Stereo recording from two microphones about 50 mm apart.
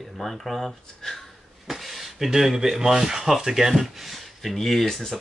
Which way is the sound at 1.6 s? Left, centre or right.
Centre.